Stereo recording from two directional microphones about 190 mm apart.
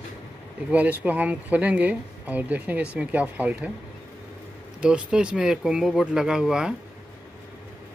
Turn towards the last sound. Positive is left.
turn(degrees=-5)  # may be behind; listen again after turning